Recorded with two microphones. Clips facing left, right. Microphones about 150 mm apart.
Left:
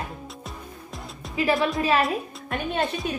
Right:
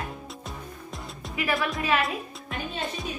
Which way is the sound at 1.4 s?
25° left (ahead or behind).